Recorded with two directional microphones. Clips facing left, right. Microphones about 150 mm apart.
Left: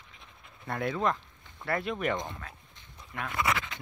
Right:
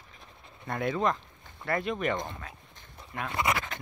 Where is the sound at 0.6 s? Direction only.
Centre (ahead or behind).